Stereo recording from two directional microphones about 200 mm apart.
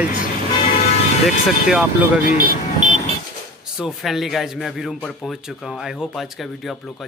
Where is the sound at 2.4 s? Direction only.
40° right (ahead or behind).